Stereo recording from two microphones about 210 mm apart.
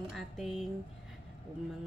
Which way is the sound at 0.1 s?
Centre (ahead or behind).